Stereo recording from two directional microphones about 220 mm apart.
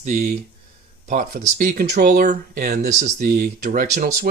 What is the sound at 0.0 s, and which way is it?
Speech, 35° right (ahead or behind).